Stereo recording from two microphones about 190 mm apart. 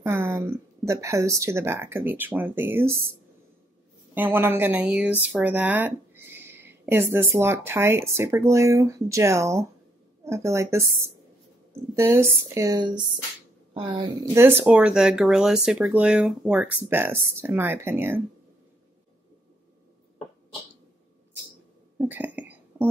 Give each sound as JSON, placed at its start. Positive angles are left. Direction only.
{"t": 0.0, "sound": "speech", "side_deg": -15}
{"t": 4.1, "sound": "speech", "side_deg": -10}
{"t": 14.3, "sound": "speech", "side_deg": -10}
{"t": 21.9, "sound": "a sound", "side_deg": -10}